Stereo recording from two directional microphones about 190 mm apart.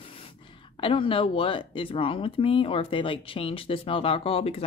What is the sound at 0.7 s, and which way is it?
Speech, 25° left (ahead or behind).